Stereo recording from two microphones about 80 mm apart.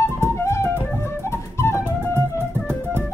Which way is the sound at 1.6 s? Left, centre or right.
Left.